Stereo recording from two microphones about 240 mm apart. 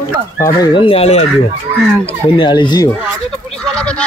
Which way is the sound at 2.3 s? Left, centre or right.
Centre.